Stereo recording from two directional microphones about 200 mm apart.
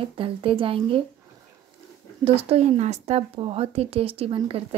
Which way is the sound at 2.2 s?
30° right (ahead or behind).